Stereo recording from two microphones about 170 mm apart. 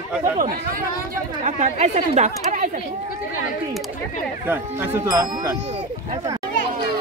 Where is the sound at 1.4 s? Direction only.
40° right (ahead or behind).